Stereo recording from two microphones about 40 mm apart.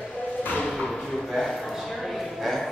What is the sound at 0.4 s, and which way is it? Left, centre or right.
Thump, left.